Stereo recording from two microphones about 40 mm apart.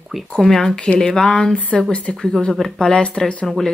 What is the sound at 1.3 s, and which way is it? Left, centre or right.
Speech, left.